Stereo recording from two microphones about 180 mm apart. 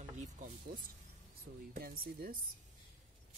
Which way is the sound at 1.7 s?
60° right (ahead or behind).